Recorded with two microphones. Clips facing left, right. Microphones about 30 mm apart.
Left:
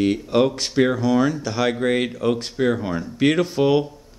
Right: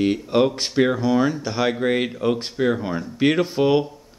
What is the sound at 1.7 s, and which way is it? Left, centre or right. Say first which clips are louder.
Speech: left 1 dB; centre.